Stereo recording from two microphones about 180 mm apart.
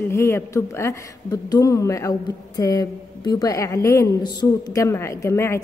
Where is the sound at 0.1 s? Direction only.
15° left (ahead or behind).